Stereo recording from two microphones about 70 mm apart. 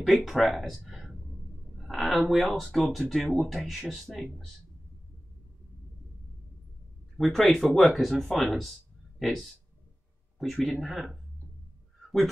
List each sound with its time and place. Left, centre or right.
0.0 s a woman's voice: centre
7.2 s speech: centre